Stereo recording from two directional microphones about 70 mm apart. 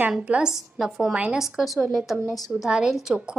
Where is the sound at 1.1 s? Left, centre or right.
Centre.